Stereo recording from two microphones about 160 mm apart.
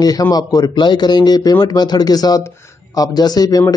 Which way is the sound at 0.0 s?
25° left (ahead or behind).